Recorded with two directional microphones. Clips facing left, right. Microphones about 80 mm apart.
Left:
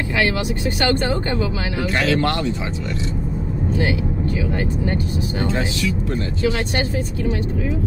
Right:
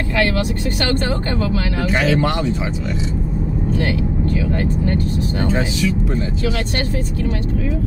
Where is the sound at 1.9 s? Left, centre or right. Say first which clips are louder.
Right 1 dB; centre.